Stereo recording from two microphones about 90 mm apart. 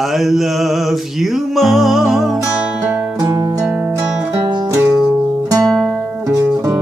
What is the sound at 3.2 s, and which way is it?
Music, 35° right (ahead or behind).